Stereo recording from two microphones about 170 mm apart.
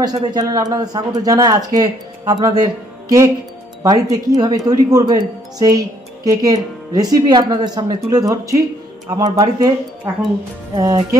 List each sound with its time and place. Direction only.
0.0 s speech: 25° right (ahead or behind)
10.7 s speech: 25° right (ahead or behind)